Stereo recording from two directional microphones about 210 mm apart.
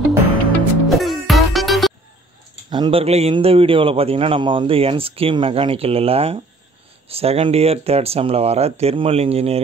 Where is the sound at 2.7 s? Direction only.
25° right (ahead or behind).